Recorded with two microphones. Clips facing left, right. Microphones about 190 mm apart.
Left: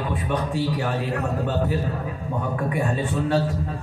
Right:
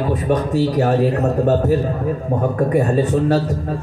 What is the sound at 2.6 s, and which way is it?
Speech, 40° right (ahead or behind).